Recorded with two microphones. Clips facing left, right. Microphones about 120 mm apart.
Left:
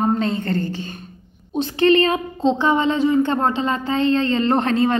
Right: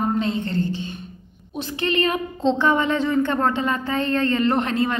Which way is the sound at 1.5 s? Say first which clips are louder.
Left 8 dB; 35° left (ahead or behind).